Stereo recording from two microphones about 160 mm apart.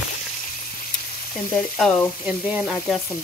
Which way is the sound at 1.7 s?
5° left (ahead or behind).